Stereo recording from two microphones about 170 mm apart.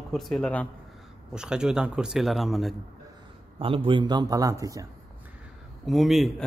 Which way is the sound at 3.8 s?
25° right (ahead or behind).